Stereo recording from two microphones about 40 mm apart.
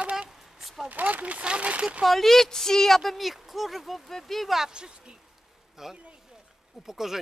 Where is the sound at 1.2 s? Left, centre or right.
Right.